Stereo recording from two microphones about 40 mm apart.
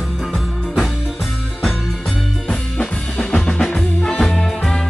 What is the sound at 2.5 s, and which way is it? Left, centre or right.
Music, left.